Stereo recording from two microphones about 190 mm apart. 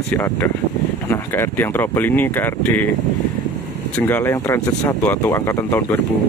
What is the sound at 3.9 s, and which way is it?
Speech, 10° left (ahead or behind).